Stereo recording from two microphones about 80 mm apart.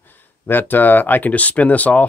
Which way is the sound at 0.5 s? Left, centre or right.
Left.